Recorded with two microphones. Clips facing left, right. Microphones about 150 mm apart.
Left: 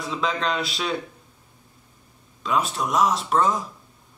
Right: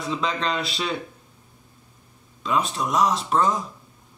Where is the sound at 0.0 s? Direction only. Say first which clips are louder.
Even; centre (ahead or behind).